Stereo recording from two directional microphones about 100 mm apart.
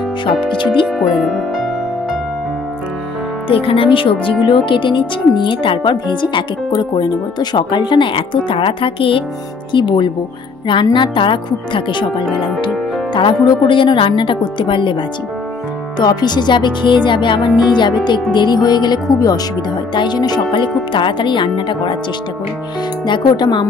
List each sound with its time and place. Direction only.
0.8 s speech: centre (ahead or behind)
3.4 s a woman's voice: 65° left (ahead or behind)
9.7 s a woman's voice: 50° left (ahead or behind)
16.0 s speech: 45° left (ahead or behind)
23.0 s speech: 45° left (ahead or behind)